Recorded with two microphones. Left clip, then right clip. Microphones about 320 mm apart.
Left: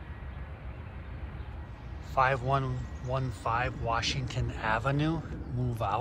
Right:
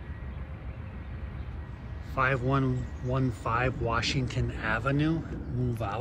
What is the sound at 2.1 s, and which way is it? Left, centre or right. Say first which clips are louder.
Speech: left 1 dB; centre.